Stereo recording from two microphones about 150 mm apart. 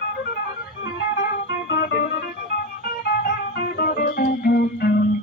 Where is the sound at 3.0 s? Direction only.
90° left.